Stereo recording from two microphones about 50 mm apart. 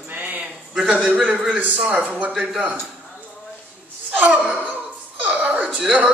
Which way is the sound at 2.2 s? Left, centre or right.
Right.